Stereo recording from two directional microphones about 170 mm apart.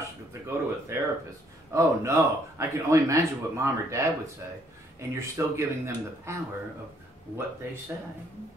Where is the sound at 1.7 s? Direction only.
15° right (ahead or behind).